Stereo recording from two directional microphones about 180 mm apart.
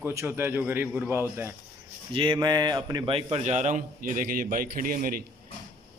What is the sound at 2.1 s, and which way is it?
A man's voice, 25° right (ahead or behind).